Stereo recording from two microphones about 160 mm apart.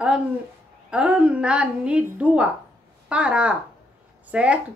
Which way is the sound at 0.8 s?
5° right (ahead or behind).